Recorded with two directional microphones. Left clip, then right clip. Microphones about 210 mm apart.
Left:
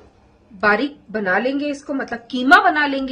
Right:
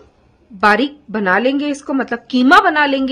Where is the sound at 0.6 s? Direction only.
45° right (ahead or behind).